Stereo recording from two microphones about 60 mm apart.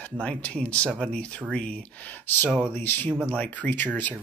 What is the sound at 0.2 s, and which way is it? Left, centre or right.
Speech, centre.